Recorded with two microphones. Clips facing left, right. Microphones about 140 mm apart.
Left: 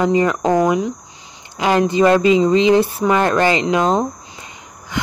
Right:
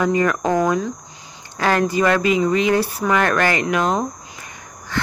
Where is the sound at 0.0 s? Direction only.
20° left (ahead or behind).